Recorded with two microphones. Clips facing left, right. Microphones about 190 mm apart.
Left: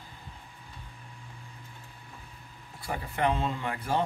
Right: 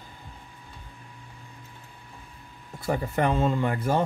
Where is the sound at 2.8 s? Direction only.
45° right (ahead or behind).